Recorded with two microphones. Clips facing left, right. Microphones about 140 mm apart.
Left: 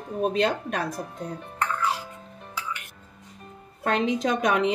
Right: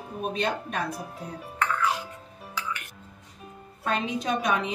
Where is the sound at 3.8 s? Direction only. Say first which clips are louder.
Left 4 dB; 90° left.